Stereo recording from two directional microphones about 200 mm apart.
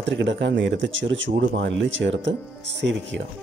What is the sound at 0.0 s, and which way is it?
Speech, 65° right (ahead or behind).